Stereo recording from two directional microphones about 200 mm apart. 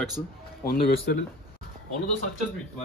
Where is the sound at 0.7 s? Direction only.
50° left (ahead or behind).